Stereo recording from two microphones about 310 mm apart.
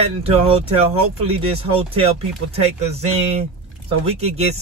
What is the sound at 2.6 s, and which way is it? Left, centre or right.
Speech, centre.